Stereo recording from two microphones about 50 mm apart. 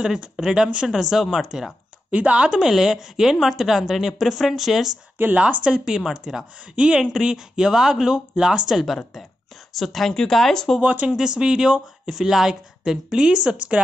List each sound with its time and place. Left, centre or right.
0.4 s speech: centre
0.8 s a woman's voice: centre
2.0 s speech: right
2.5 s a woman's voice: centre
5.1 s speech: right
5.4 s speech: right
6.7 s speech: right
8.8 s a woman's voice: centre
10.8 s speech: right
11.1 s speech: centre